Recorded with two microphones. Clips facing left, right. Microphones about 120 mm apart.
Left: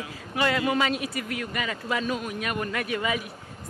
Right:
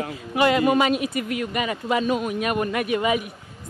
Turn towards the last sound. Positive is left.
turn(degrees=-20)  # may be behind; listen again after turning